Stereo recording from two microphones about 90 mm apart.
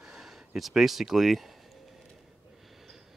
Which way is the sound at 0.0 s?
5° right (ahead or behind).